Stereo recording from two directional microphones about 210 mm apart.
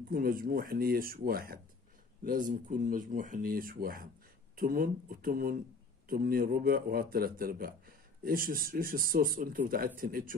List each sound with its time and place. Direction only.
0.1 s a man's voice: 45° right (ahead or behind)